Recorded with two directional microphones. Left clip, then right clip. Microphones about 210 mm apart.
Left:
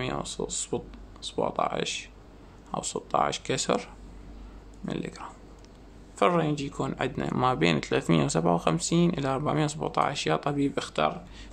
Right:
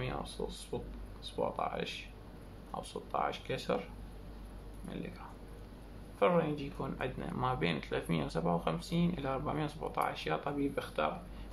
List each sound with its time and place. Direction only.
0.0 s speech: 50° left (ahead or behind)
4.8 s speech: 50° left (ahead or behind)